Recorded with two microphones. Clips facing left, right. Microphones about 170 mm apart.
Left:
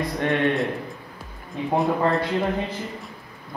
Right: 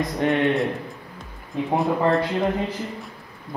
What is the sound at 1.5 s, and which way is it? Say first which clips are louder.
Speech: even; centre (ahead or behind).